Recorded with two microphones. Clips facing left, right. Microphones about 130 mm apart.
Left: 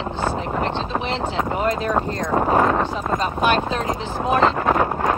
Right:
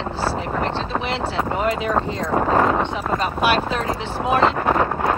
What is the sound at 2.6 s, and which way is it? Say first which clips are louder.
Speech: even; 5° right (ahead or behind).